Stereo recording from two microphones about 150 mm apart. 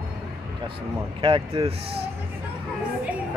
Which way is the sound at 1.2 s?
35° right (ahead or behind).